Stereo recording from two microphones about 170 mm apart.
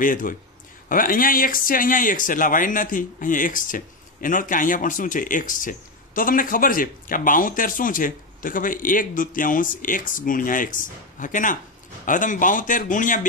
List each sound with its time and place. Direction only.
0.0 s speech: 50° left (ahead or behind)